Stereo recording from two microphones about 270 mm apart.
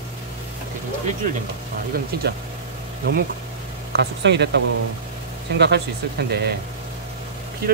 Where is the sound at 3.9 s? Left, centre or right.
Right.